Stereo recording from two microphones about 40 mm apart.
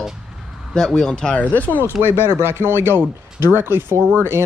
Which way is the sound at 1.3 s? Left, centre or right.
Left.